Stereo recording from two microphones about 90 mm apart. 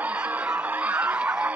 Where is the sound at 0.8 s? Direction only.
15° right (ahead or behind).